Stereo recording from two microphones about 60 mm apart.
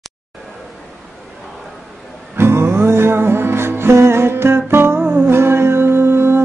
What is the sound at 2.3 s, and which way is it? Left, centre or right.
Music, right.